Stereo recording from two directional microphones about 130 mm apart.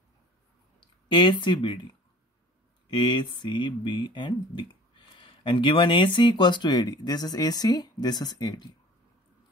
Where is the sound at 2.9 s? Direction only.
35° left (ahead or behind).